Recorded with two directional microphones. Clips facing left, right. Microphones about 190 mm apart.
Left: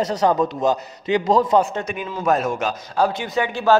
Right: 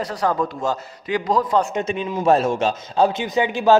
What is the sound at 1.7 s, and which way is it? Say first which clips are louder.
A man's voice: right 4 dB; 20° right (ahead or behind).